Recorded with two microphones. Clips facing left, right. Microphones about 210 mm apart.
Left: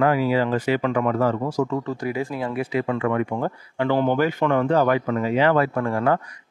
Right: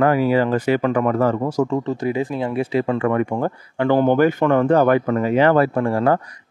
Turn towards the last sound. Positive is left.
turn(degrees=-35)  # may be behind; listen again after turning